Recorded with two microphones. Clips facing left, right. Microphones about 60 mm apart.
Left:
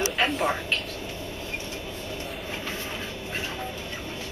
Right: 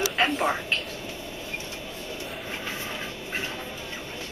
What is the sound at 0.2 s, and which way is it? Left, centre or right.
Speech, centre.